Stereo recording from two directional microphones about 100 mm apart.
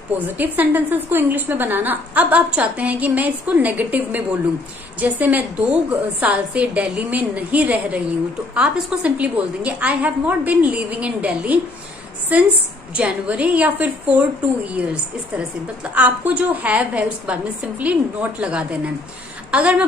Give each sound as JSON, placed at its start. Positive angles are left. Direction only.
{"t": 0.4, "sound": "a woman's voice", "side_deg": -20}